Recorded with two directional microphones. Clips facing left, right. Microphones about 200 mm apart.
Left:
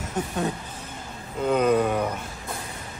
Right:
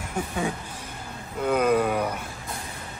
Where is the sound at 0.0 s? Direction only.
10° right (ahead or behind).